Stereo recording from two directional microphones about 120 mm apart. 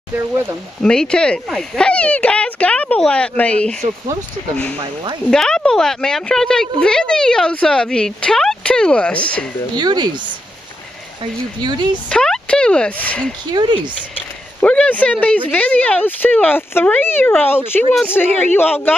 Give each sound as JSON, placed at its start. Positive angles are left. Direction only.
{"t": 0.2, "sound": "speech", "side_deg": -20}
{"t": 0.8, "sound": "speech", "side_deg": 5}
{"t": 5.3, "sound": "speech", "side_deg": 5}
{"t": 9.8, "sound": "speech", "side_deg": -35}
{"t": 11.6, "sound": "speech", "side_deg": -35}
{"t": 12.1, "sound": "speech", "side_deg": 5}
{"t": 13.5, "sound": "speech", "side_deg": -35}
{"t": 14.6, "sound": "speech", "side_deg": 10}